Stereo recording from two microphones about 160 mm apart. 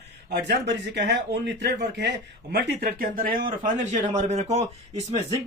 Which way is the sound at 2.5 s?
75° right (ahead or behind).